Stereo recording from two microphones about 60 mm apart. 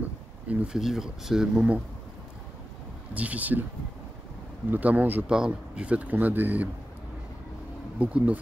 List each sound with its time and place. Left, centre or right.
0.7 s speech: centre
3.2 s speech: right
4.6 s speech: right
5.2 s speech: centre; by 6.7 s right
8.0 s speech: right